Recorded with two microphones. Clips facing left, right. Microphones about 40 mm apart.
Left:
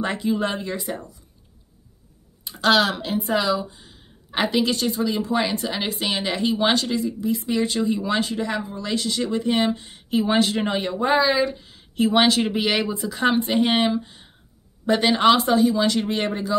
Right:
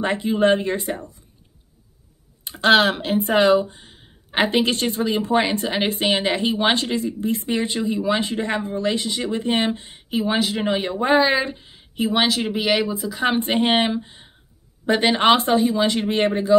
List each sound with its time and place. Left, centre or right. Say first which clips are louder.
0.0 s speech: right 4 dB; right
2.4 s speech: right 3 dB; right
4.3 s speech: right 2 dB; right
7.8 s speech: right 1 dB; centre
8.2 s speech: right 1 dB; right
8.9 s speech: even; right
9.4 s speech: right 1 dB; right
10.0 s speech: left 1 dB; centre
10.9 s speech: right 2 dB; right
12.0 s speech: left 2 dB; centre
13.4 s speech: right 1 dB; right